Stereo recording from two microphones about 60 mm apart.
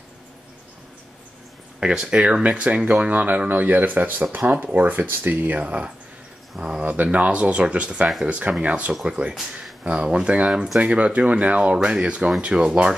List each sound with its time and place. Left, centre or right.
1.8 s speech: centre
6.5 s speech: centre
6.9 s speech: right